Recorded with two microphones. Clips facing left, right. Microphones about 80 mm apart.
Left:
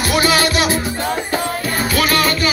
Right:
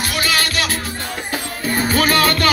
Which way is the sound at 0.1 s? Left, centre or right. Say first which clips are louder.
Left 7 dB; centre.